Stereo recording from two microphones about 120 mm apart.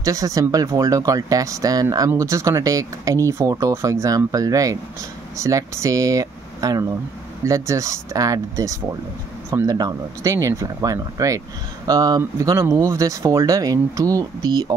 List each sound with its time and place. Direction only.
0.0 s speech: 30° right (ahead or behind)